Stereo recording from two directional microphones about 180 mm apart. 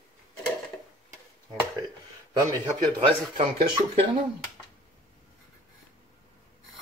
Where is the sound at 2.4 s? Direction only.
20° right (ahead or behind).